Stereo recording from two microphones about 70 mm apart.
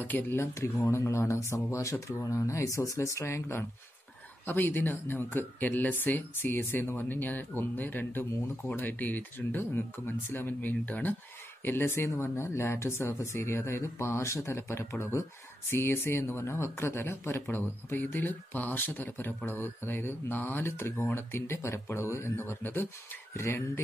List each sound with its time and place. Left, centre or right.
0.0 s speech: left
0.9 s speech: left